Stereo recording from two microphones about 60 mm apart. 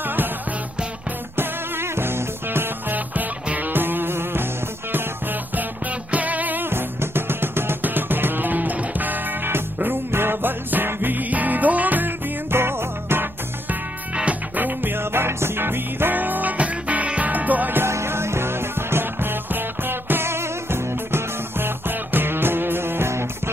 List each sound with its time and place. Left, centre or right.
0.0 s music: right
1.3 s music: right
5.6 s music: right
14.1 s music: right
17.8 s music: right